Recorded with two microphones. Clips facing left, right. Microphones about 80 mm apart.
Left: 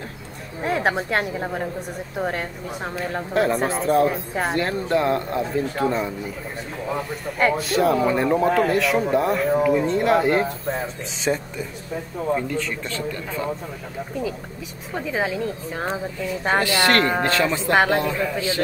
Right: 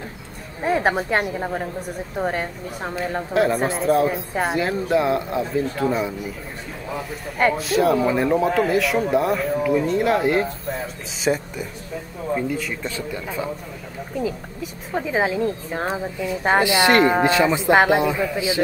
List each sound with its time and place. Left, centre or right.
0.7 s a woman's voice: centre
11.2 s speech: centre
15.0 s speech: centre